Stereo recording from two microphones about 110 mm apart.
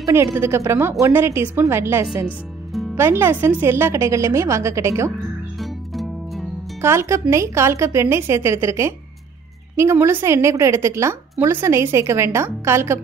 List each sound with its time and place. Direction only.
0.0 s a woman's voice: 25° right (ahead or behind)
5.6 s music: centre (ahead or behind)
6.8 s a woman's voice: 25° right (ahead or behind)